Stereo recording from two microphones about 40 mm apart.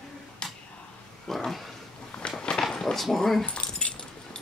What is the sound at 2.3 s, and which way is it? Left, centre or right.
Walk, left.